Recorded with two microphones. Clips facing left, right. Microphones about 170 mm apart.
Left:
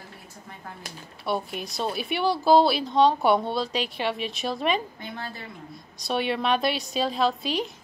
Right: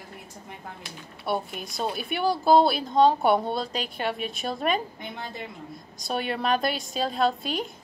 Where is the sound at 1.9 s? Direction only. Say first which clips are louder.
Left 2 dB; 50° right (ahead or behind).